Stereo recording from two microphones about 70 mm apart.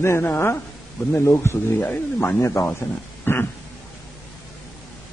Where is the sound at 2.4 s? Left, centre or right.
Left.